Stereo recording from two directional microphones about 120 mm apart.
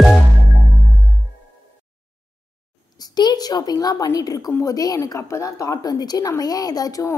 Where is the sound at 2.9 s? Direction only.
35° left (ahead or behind).